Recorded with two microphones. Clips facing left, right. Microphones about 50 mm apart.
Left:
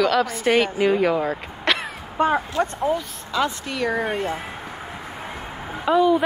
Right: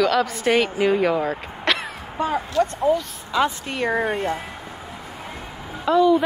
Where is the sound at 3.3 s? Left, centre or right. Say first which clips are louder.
Right 2 dB; centre.